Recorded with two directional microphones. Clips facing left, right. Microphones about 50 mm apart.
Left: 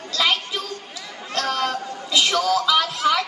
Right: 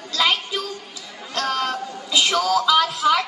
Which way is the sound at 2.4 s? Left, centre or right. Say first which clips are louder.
Right 2 dB; centre.